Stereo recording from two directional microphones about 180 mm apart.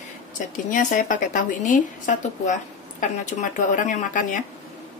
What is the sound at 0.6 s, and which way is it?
A woman's voice, 45° left (ahead or behind).